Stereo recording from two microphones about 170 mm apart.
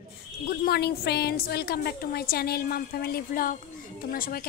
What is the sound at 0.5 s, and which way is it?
A woman's voice, 70° left (ahead or behind).